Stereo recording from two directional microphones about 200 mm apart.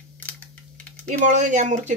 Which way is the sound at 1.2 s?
40° right (ahead or behind).